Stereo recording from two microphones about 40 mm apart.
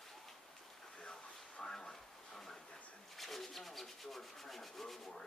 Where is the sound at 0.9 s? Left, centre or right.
Left.